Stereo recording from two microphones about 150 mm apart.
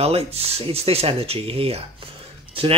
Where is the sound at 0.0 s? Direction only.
40° right (ahead or behind).